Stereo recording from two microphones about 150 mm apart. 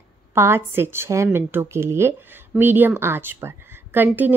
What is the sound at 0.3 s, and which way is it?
A woman's voice, 15° right (ahead or behind).